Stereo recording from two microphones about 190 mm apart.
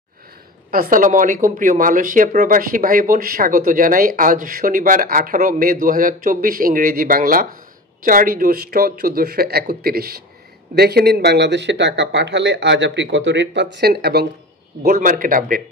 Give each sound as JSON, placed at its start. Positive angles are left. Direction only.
{"t": 0.7, "sound": "speech", "side_deg": -45}
{"t": 14.8, "sound": "speech", "side_deg": -50}